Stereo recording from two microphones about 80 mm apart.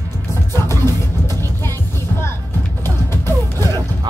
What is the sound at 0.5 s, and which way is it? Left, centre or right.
Music, left.